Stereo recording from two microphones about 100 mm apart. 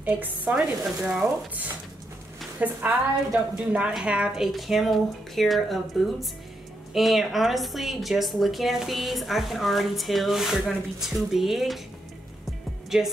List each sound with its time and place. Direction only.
0.0 s speech: 15° right (ahead or behind)
0.6 s a woman's voice: 5° right (ahead or behind)
2.6 s a woman's voice: 10° right (ahead or behind)
6.9 s a woman's voice: centre (ahead or behind)
12.9 s a woman's voice: 5° right (ahead or behind)